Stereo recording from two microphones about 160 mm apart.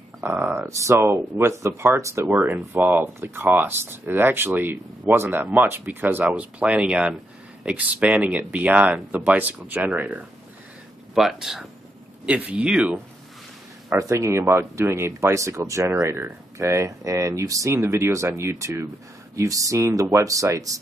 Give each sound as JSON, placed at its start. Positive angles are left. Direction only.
{"t": 0.2, "sound": "speech", "side_deg": -15}
{"t": 13.9, "sound": "speech", "side_deg": -20}